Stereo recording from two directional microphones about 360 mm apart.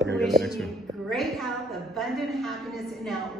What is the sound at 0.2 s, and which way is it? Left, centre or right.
A woman's voice, centre.